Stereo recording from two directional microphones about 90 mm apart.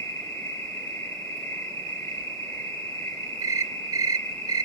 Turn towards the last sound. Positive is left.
turn(degrees=-40)  # may be behind; listen again after turning